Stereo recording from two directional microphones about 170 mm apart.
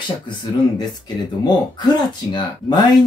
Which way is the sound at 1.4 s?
25° left (ahead or behind).